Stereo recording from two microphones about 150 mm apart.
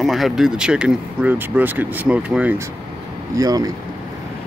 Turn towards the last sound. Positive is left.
turn(degrees=-25)  # may be behind; listen again after turning